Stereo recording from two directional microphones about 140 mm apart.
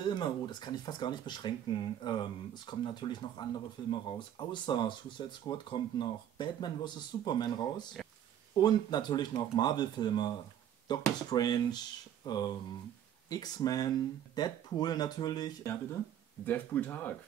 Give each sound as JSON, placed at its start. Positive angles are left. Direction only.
{"t": 0.0, "sound": "speech", "side_deg": 30}
{"t": 16.4, "sound": "speech", "side_deg": 10}